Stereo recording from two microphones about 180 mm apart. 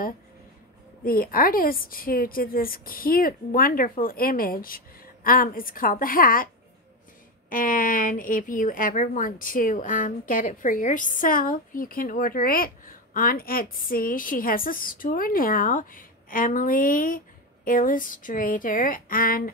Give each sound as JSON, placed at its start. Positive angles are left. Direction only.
{"t": 1.0, "sound": "a woman's voice", "side_deg": 55}